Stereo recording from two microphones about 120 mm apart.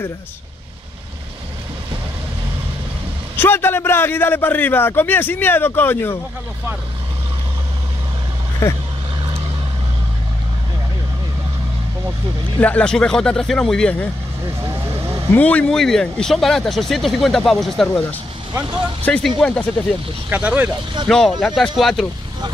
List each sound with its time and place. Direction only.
3.3 s a man's voice: 20° left (ahead or behind)
8.6 s speech: 25° left (ahead or behind)
12.5 s speech: 10° left (ahead or behind)
14.6 s vehicle: 20° right (ahead or behind)
15.3 s speech: 10° left (ahead or behind)
19.0 s a man's voice: 10° left (ahead or behind)
20.2 s speech: 15° right (ahead or behind)
21.1 s speech: 5° left (ahead or behind)